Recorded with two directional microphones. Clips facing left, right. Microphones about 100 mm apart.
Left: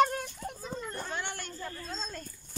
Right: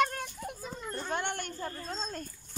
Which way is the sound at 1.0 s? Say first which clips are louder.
Right 4 dB; 55° right (ahead or behind).